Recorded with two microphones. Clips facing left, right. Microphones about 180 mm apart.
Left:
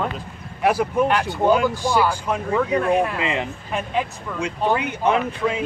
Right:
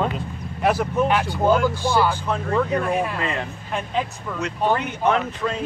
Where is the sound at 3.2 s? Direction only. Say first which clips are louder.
Left 2 dB; 15° left (ahead or behind).